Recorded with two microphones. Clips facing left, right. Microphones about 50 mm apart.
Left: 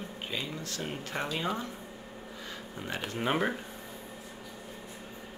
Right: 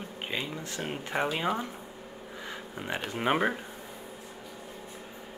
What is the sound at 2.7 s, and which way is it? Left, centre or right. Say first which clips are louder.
Speech: right 2 dB; centre.